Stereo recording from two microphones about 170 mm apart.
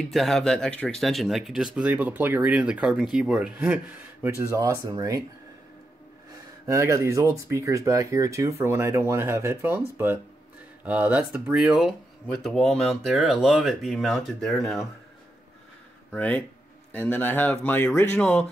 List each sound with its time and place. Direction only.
0.0 s speech: centre (ahead or behind); by 5.2 s 20° right (ahead or behind)
6.6 s speech: 20° right (ahead or behind); by 14.9 s centre (ahead or behind)
16.1 s speech: 10° left (ahead or behind)